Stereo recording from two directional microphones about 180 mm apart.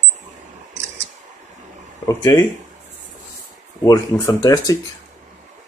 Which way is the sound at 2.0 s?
15° left (ahead or behind).